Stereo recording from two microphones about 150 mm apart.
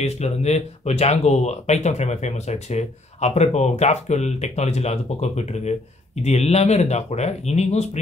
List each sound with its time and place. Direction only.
0.0 s speech: 45° left (ahead or behind)